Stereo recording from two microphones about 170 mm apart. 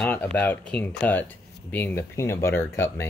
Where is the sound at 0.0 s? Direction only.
10° left (ahead or behind).